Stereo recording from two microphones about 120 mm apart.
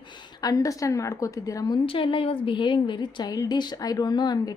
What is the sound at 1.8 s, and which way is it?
A woman's voice, 45° left (ahead or behind).